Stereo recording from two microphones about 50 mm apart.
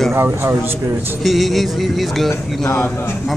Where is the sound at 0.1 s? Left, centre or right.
Right.